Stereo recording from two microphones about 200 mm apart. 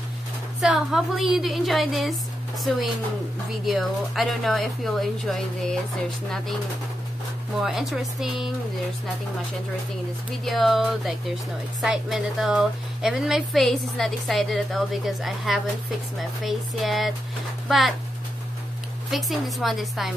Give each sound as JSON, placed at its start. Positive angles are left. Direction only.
{"t": 0.6, "sound": "a woman's voice", "side_deg": 0}
{"t": 3.6, "sound": "a woman's voice", "side_deg": 0}
{"t": 7.6, "sound": "a woman's voice", "side_deg": 0}
{"t": 10.4, "sound": "a woman's voice", "side_deg": 0}
{"t": 19.0, "sound": "a woman's voice", "side_deg": 0}